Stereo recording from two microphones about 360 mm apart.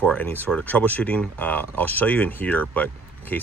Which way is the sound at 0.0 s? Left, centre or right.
Centre.